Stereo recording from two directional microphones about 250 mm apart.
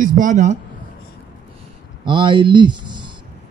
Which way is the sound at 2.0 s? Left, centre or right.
Centre.